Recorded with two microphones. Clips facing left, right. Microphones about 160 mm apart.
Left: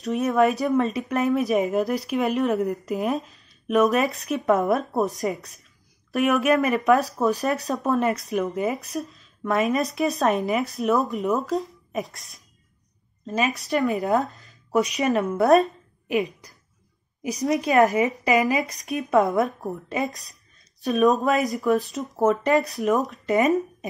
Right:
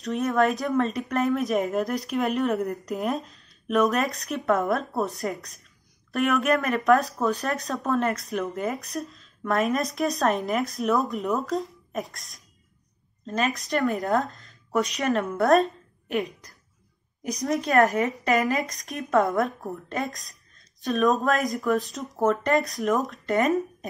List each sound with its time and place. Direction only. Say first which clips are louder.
0.0 s a woman's voice: left 3 dB; centre (ahead or behind)
4.5 s a woman's voice: left 3 dB; 20° left (ahead or behind)
6.1 s a woman's voice: left 3 dB; centre (ahead or behind)
18.0 s a woman's voice: left 3 dB; 15° left (ahead or behind)
18.4 s a woman's voice: left 2 dB; centre (ahead or behind)